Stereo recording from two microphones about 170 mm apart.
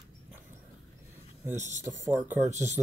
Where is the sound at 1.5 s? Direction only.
45° right (ahead or behind).